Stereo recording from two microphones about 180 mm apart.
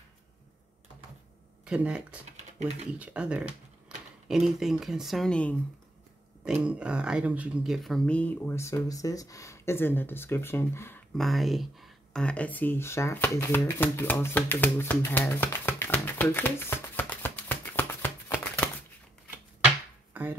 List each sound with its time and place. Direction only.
1.6 s speech: 5° right (ahead or behind)
2.3 s typing: 35° right (ahead or behind)
2.9 s speech: 5° right (ahead or behind)
3.9 s a sound: 5° right (ahead or behind)
4.3 s speech: centre (ahead or behind)
6.4 s speech: 5° right (ahead or behind); by 11.0 s 15° left (ahead or behind)
11.1 s speech: centre (ahead or behind)